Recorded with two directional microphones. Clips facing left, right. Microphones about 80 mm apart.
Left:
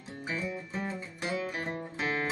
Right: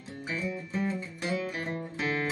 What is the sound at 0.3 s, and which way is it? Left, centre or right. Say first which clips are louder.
Music: right 2 dB; left.